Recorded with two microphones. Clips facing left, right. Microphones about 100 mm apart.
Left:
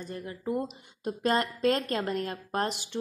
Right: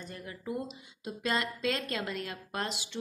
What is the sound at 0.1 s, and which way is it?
Speech, 30° left (ahead or behind).